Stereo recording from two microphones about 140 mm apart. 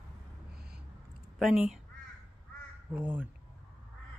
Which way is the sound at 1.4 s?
5° right (ahead or behind).